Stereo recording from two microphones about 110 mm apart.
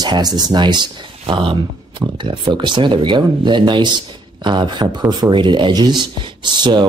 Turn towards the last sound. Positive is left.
turn(degrees=-45)  # may be behind; listen again after turning